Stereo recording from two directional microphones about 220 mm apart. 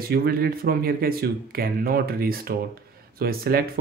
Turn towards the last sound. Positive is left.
turn(degrees=-45)  # may be behind; listen again after turning